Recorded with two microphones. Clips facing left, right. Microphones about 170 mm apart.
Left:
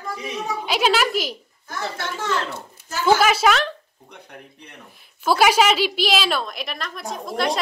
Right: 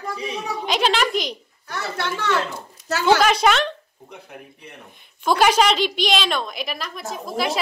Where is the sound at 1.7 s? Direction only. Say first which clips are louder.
Right 2 dB; 70° right (ahead or behind).